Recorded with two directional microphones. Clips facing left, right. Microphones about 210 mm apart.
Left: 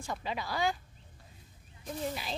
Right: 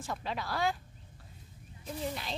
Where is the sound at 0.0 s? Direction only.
Centre (ahead or behind).